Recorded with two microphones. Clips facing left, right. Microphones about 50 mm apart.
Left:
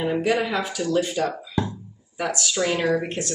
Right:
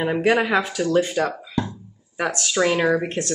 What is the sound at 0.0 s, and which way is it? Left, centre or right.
Speech, right.